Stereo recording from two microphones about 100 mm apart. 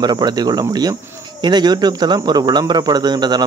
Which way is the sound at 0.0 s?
45° right (ahead or behind).